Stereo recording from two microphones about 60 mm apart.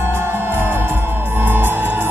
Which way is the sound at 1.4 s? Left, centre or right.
Right.